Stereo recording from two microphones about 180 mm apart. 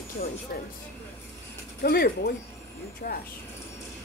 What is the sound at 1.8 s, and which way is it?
A woman's voice, 60° left (ahead or behind).